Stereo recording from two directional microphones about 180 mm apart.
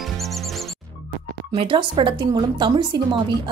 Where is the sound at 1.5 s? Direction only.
30° right (ahead or behind).